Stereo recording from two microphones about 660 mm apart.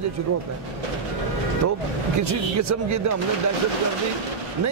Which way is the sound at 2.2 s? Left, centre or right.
Right.